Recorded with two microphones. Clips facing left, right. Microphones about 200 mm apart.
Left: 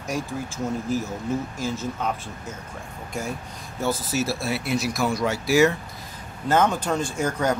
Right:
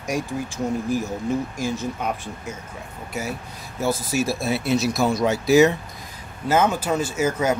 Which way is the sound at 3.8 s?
10° right (ahead or behind).